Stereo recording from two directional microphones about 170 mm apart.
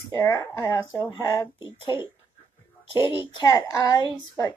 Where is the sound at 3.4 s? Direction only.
20° left (ahead or behind).